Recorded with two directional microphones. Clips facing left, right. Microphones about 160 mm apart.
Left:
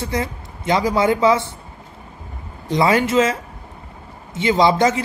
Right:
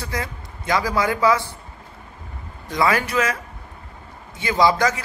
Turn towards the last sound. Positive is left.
turn(degrees=25)  # may be behind; listen again after turning